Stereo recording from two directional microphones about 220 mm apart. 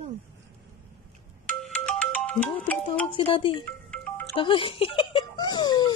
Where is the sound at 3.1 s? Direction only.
25° left (ahead or behind).